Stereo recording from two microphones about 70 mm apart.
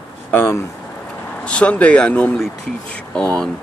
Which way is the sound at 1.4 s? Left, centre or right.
Centre.